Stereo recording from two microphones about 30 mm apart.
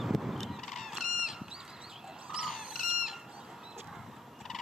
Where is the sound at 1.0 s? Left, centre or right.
Centre.